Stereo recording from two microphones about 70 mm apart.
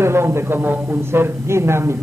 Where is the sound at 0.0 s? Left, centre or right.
Right.